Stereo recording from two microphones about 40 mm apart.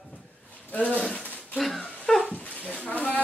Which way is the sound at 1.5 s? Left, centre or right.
Centre.